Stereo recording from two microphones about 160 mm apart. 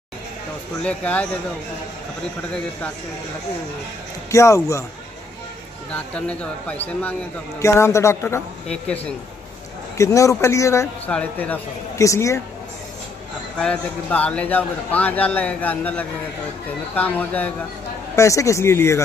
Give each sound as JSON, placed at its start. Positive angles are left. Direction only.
{"t": 0.8, "sound": "a man's voice", "side_deg": 10}
{"t": 4.3, "sound": "speech", "side_deg": 20}
{"t": 5.9, "sound": "a man's voice", "side_deg": 5}
{"t": 9.9, "sound": "speech", "side_deg": 20}
{"t": 11.1, "sound": "a man's voice", "side_deg": 10}
{"t": 13.6, "sound": "a man's voice", "side_deg": 5}